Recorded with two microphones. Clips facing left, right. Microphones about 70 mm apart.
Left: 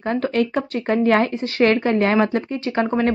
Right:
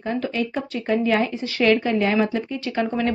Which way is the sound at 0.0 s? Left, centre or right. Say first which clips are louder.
Left 4 dB; left.